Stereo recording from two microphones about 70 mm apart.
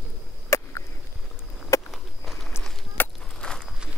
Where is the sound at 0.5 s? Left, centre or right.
Left.